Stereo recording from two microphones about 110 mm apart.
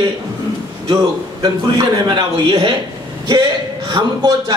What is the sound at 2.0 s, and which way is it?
Speech, 45° right (ahead or behind).